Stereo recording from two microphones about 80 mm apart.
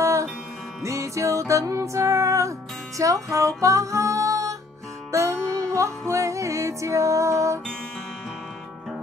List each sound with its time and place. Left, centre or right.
0.0 s music: right